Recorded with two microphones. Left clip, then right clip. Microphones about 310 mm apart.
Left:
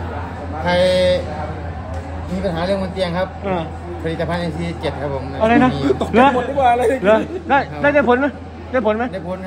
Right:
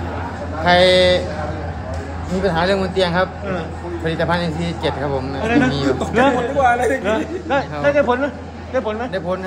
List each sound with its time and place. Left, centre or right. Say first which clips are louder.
0.7 s speech: right 2 dB; centre
2.4 s speech: right 3 dB; centre
5.4 s a man's voice: left 4 dB; left
5.7 s speech: left 1 dB; centre
6.1 s a man's voice: left 2 dB; left